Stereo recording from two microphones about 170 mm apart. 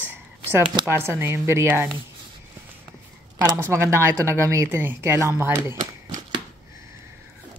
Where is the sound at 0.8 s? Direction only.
15° right (ahead or behind).